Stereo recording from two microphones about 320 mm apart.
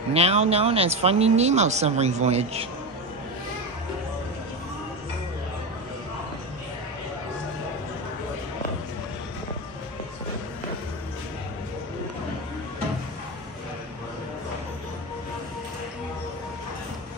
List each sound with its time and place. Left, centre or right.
0.1 s speech: centre